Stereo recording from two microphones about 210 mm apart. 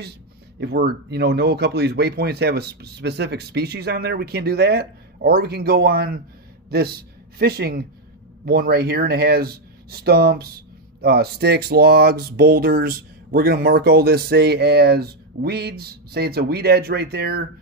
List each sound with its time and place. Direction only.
0.6 s speech: 55° right (ahead or behind)